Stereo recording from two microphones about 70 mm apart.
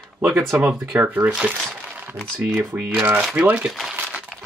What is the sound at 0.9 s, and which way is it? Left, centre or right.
Speech, right.